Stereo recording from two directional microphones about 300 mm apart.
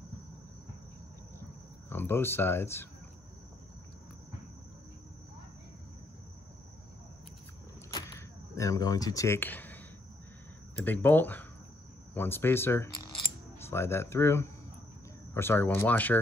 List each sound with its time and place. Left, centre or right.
1.9 s speech: centre
8.5 s speech: centre
10.8 s speech: centre